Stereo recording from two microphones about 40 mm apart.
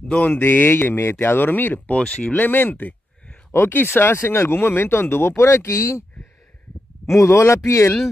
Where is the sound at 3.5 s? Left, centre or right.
Left.